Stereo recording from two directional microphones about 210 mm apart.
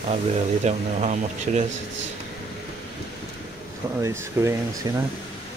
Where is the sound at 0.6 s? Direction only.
30° right (ahead or behind).